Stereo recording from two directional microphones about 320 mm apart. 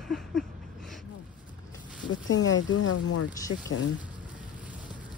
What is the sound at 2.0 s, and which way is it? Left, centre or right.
Speech, left.